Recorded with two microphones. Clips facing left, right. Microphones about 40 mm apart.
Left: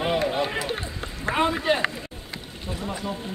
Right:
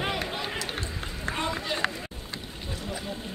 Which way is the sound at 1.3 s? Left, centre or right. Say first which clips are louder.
Left 9 dB; left.